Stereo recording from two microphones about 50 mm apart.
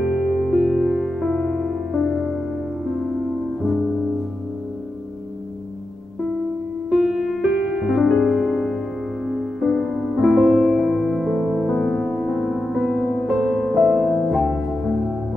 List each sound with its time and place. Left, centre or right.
0.0 s music: centre
6.9 s music: centre